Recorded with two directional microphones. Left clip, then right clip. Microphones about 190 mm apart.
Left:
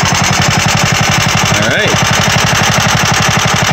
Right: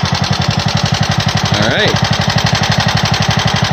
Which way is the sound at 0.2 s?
10° left (ahead or behind).